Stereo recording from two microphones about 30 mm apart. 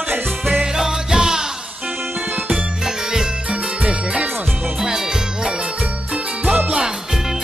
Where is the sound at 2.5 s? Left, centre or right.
Centre.